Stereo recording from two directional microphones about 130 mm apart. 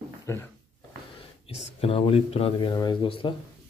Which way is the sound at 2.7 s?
35° left (ahead or behind).